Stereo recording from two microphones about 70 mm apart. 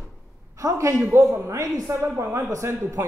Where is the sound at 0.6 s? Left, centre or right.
Right.